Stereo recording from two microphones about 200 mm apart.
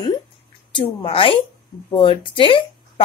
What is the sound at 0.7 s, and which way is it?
Speech, 25° left (ahead or behind).